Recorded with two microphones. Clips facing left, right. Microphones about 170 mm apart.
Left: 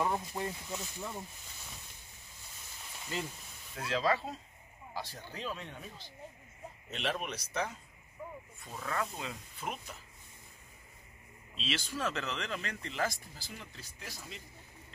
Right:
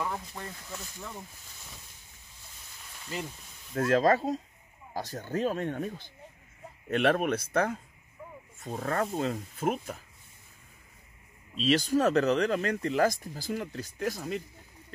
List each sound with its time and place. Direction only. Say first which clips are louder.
0.0 s speech: left 2 dB; 20° left (ahead or behind)
3.7 s speech: right 8 dB; 50° right (ahead or behind)
8.5 s speech: right 7 dB; 45° right (ahead or behind)
11.5 s speech: right 13 dB; 40° right (ahead or behind)